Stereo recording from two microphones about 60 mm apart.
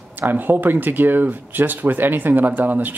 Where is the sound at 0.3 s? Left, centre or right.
Right.